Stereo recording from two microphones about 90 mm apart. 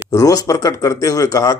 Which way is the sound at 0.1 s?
40° left (ahead or behind).